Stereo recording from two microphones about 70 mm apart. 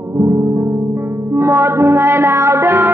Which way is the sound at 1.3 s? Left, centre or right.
Right.